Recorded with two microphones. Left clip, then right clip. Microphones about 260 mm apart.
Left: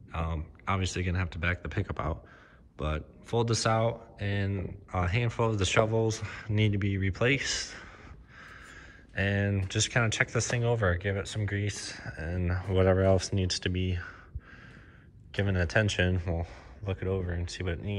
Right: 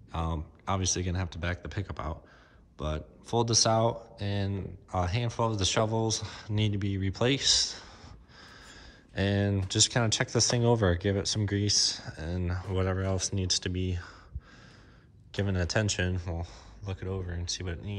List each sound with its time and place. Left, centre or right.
0.1 s speech: centre
15.4 s speech: centre